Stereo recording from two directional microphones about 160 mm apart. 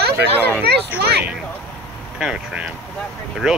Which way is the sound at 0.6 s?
90° right.